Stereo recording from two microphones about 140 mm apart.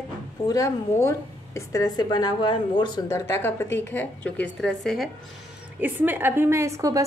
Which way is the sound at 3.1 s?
15° left (ahead or behind).